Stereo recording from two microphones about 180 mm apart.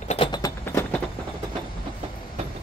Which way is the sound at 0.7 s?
15° left (ahead or behind).